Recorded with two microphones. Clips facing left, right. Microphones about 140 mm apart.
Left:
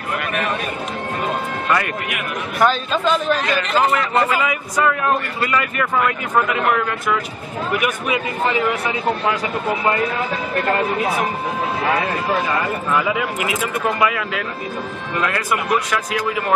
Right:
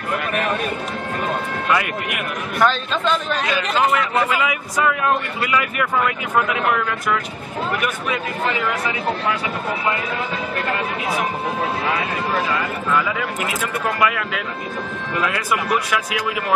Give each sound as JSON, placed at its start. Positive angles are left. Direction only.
{"t": 1.2, "sound": "a sound", "side_deg": -5}
{"t": 2.6, "sound": "speech", "side_deg": 5}
{"t": 8.5, "sound": "speech", "side_deg": 30}
{"t": 13.4, "sound": "speech", "side_deg": 5}